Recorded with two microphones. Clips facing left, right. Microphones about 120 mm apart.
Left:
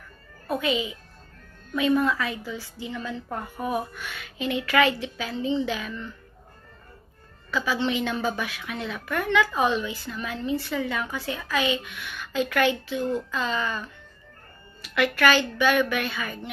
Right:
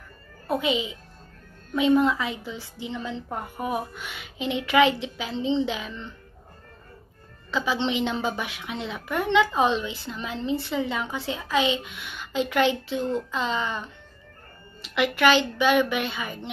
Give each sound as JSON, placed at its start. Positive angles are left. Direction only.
{"t": 0.5, "sound": "a woman's voice", "side_deg": -20}
{"t": 7.5, "sound": "a woman's voice", "side_deg": -20}